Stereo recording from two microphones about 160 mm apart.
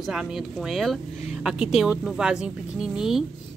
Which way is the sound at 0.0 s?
5° right (ahead or behind).